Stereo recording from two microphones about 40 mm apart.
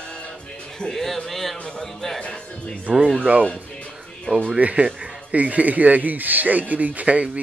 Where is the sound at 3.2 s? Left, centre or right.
Right.